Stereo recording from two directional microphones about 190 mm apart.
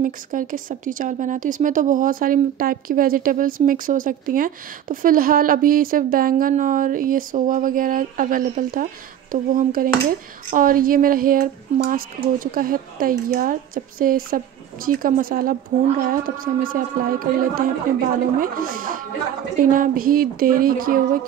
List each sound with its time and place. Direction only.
0.0 s speech: 45° right (ahead or behind)